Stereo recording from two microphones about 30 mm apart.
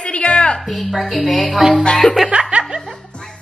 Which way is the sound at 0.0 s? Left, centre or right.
Left.